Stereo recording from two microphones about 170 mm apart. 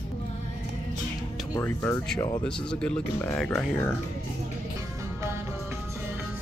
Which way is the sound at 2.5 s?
5° left (ahead or behind).